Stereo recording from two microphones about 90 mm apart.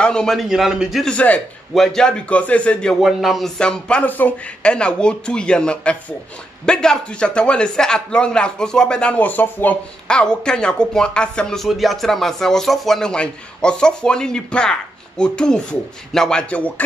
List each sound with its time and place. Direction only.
0.0 s a man's voice: 10° left (ahead or behind)
0.5 s a man's voice: 5° right (ahead or behind)
1.0 s speech: 15° left (ahead or behind)
1.7 s speech: 5° left (ahead or behind)
3.0 s speech: centre (ahead or behind); by 9.8 s 20° left (ahead or behind)
10.0 s speech: 10° left (ahead or behind)